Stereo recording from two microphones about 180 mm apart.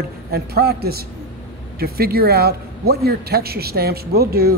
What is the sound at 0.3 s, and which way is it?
A man's voice, 60° right (ahead or behind).